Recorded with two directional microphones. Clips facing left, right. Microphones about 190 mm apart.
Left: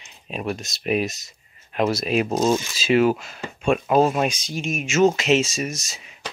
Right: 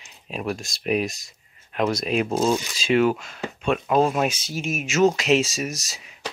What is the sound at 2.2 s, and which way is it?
Speech, 15° left (ahead or behind).